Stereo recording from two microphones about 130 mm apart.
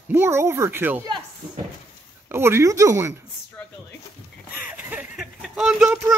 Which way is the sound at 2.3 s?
20° right (ahead or behind).